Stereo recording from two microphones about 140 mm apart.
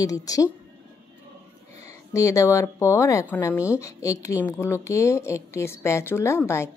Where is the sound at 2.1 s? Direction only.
25° left (ahead or behind).